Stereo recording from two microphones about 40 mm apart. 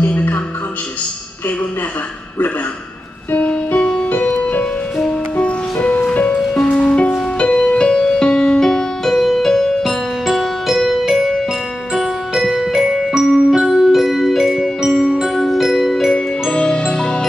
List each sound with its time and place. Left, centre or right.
3.3 s music: left
6.5 s music: centre
7.0 s music: left; by 14.7 s centre
14.9 s glockenspiel: centre
16.1 s music: centre